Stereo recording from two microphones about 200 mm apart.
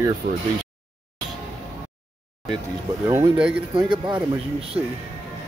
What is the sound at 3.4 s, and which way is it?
Speech, 5° right (ahead or behind).